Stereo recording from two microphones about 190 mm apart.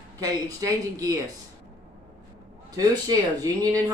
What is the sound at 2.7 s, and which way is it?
Speech, 20° right (ahead or behind).